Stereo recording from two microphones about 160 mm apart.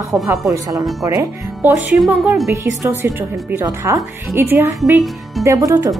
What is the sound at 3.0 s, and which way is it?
A woman's voice, 15° right (ahead or behind).